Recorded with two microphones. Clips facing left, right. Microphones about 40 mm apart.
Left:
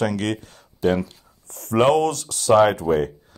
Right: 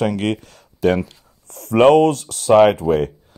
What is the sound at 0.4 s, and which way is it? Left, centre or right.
Speech, right.